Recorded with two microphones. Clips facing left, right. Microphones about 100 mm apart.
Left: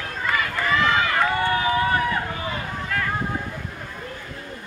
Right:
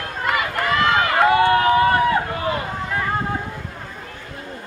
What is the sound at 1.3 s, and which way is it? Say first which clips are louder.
Run: right 7 dB; 60° right (ahead or behind).